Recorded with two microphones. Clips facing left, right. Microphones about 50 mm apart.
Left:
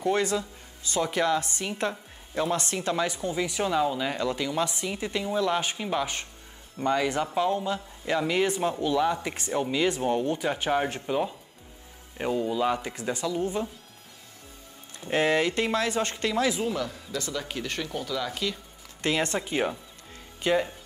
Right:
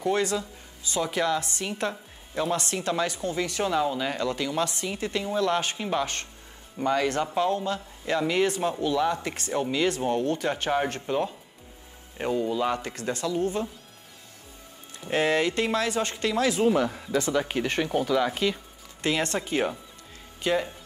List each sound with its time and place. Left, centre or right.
0.1 s speech: left
1.9 s speech: centre
2.5 s speech: left
3.2 s speech: centre
5.8 s speech: centre
7.4 s speech: centre
9.5 s speech: centre
12.7 s speech: centre
13.4 s speech: centre
15.0 s speech: centre
16.6 s speech: right
19.2 s speech: centre
19.5 s speech: centre
20.4 s speech: left